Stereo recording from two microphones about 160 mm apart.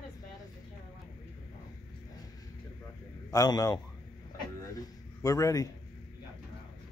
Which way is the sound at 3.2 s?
25° left (ahead or behind).